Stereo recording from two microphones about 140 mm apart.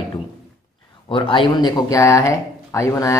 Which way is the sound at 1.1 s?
40° left (ahead or behind).